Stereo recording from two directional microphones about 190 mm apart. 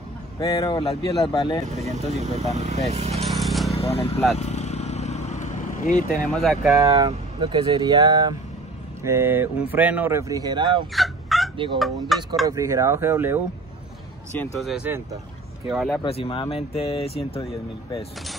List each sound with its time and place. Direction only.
0.4 s speech: 20° left (ahead or behind)
2.3 s speech: 35° right (ahead or behind)
3.3 s a sound: centre (ahead or behind)
3.9 s speech: 30° left (ahead or behind)
4.4 s vehicle: 35° left (ahead or behind)
6.2 s speech: 5° left (ahead or behind)
6.7 s speech: 20° right (ahead or behind)
11.0 s fowl: centre (ahead or behind)
11.5 s speech: 25° right (ahead or behind)
12.1 s speech: centre (ahead or behind)
12.4 s speech: 15° right (ahead or behind)
14.4 s speech: centre (ahead or behind)
16.0 s speech: 30° left (ahead or behind)